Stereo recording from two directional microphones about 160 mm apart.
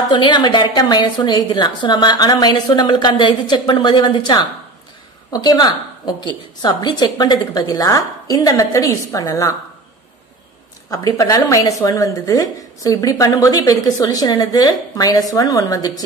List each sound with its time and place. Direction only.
0.1 s a woman's voice: 30° left (ahead or behind)
10.9 s a woman's voice: 25° left (ahead or behind)